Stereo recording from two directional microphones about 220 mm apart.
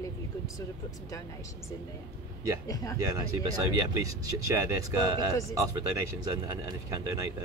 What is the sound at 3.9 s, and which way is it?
Speech, 15° right (ahead or behind).